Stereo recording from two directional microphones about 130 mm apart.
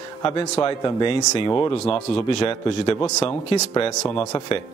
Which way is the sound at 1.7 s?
50° left (ahead or behind).